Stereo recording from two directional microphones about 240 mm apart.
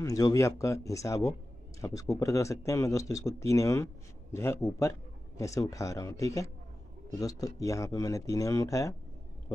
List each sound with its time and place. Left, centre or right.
0.0 s speech: centre